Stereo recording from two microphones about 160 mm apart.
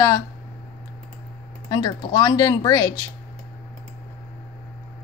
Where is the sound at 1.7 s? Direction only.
25° left (ahead or behind).